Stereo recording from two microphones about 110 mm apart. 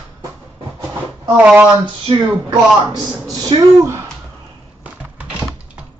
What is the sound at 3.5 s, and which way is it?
Speech, 55° right (ahead or behind).